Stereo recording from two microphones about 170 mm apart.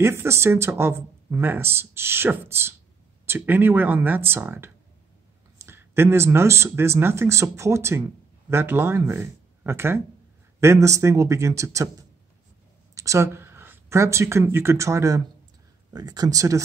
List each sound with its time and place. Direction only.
0.0 s speech: 15° right (ahead or behind)
12.9 s speech: 20° right (ahead or behind)